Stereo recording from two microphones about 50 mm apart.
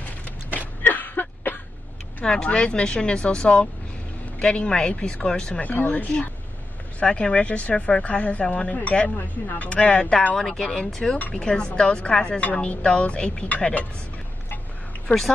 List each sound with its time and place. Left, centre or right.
0.5 s a sound: left
2.2 s speech: centre
5.5 s speech: left
7.0 s speech: left
10.3 s speech: centre